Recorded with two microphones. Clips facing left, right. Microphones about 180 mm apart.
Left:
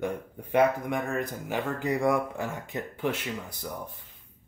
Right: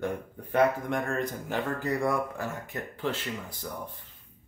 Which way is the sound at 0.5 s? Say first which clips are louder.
Left 1 dB; 10° left (ahead or behind).